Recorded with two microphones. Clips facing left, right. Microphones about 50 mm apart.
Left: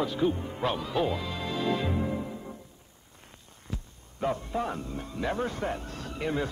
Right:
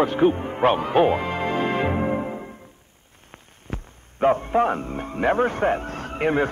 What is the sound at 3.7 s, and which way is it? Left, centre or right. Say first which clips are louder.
A man's voice: right 6 dB; right.